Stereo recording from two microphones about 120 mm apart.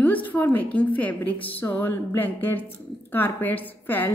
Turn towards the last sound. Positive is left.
turn(degrees=15)  # may be behind; listen again after turning